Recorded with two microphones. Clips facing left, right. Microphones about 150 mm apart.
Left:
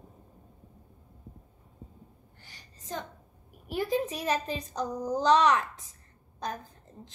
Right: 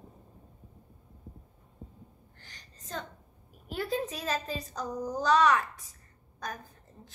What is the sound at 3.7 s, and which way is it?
A child's voice, 15° left (ahead or behind).